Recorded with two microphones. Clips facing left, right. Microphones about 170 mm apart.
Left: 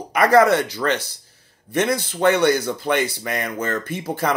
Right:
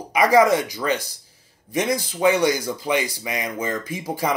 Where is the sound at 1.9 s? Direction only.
65° left (ahead or behind).